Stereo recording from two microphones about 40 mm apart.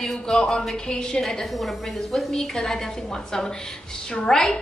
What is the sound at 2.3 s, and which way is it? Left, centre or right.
A woman's voice, centre.